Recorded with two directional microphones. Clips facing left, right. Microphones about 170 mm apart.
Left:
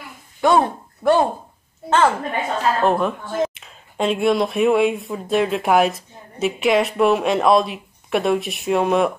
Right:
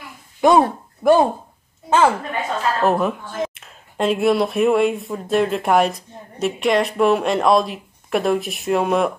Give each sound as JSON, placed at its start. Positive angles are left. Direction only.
{"t": 0.4, "sound": "a woman's voice", "side_deg": -20}